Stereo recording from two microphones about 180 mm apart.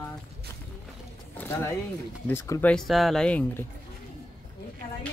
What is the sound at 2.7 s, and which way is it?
Speech, centre (ahead or behind).